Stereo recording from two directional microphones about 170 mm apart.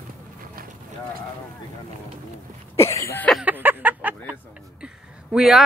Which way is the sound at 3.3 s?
5° right (ahead or behind).